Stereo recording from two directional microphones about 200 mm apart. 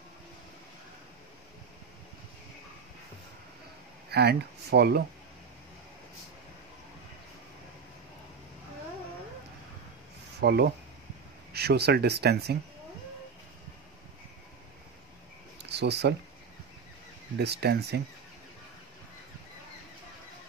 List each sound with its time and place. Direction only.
4.1 s speech: 55° right (ahead or behind)
10.4 s speech: 55° right (ahead or behind)
15.7 s speech: 60° right (ahead or behind)
17.4 s speech: 55° right (ahead or behind)